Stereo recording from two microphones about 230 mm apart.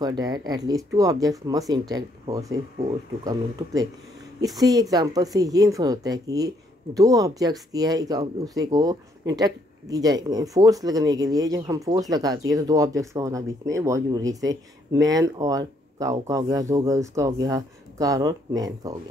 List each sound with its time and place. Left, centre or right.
0.0 s speech: centre